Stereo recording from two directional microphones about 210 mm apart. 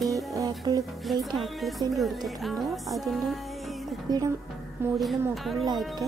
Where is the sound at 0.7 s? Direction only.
15° right (ahead or behind).